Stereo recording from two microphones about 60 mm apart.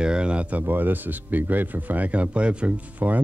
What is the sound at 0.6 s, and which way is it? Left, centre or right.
Speech, right.